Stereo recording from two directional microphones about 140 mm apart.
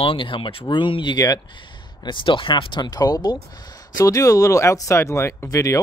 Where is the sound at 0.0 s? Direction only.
40° left (ahead or behind).